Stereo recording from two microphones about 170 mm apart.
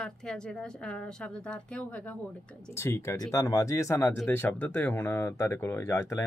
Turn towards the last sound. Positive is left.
turn(degrees=15)  # may be behind; listen again after turning